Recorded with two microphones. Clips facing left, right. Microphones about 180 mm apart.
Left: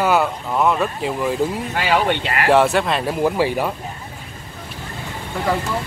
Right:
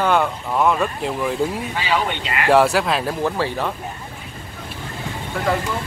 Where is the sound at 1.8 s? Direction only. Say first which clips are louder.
Left 5 dB; 50° left (ahead or behind).